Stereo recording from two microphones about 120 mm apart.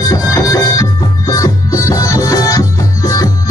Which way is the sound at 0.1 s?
30° left (ahead or behind).